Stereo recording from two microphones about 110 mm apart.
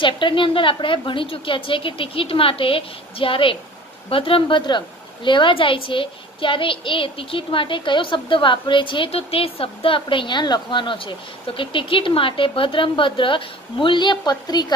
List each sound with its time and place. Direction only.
0.0 s a woman's voice: 50° left (ahead or behind)